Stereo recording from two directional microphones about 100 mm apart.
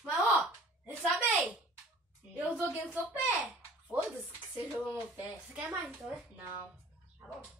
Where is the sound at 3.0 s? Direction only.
20° right (ahead or behind).